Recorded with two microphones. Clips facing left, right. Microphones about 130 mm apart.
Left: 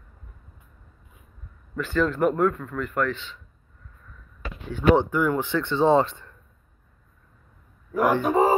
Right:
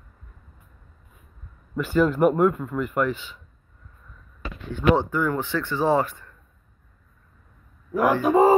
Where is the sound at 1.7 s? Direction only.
10° right (ahead or behind).